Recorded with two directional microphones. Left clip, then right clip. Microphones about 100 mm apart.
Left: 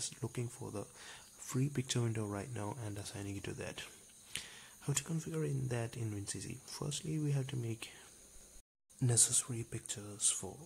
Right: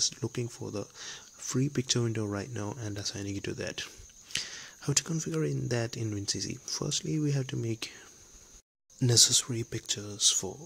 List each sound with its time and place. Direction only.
0.0 s speech: 30° right (ahead or behind)
9.0 s speech: 35° right (ahead or behind)